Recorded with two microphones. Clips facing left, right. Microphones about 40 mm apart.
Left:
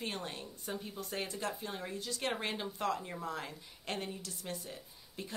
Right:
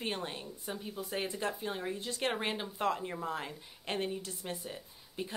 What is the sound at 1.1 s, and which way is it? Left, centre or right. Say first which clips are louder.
Speech: right 3 dB; right.